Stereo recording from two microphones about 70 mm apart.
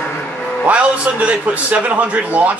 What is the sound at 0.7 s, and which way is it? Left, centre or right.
A man's voice, centre.